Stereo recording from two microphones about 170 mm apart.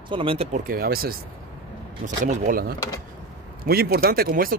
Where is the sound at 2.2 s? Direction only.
55° right (ahead or behind).